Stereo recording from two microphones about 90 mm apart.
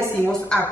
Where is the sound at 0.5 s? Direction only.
5° left (ahead or behind).